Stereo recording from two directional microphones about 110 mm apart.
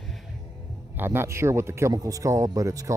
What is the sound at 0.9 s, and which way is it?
Speech, 20° right (ahead or behind).